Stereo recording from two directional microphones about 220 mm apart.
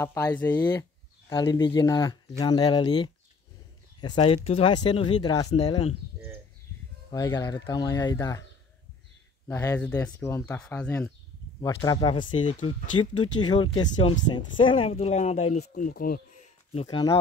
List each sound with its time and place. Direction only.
0.0 s speech: 15° left (ahead or behind)
1.3 s speech: 20° left (ahead or behind)
7.1 s speech: 15° left (ahead or behind)
9.5 s speech: 15° left (ahead or behind)
11.6 s speech: 15° left (ahead or behind); by 16.2 s 40° left (ahead or behind)
16.7 s speech: 20° left (ahead or behind)